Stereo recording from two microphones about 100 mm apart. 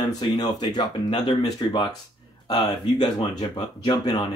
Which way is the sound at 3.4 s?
65° left (ahead or behind).